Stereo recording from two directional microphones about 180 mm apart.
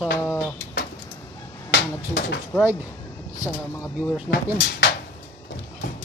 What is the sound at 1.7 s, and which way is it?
Speech, 70° left (ahead or behind).